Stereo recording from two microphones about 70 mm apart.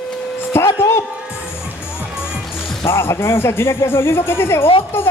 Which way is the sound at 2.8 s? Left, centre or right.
Left.